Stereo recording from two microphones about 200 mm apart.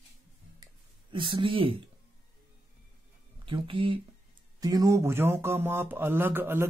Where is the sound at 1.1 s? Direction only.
25° right (ahead or behind).